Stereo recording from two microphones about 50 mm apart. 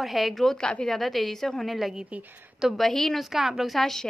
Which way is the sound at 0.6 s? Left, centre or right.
Centre.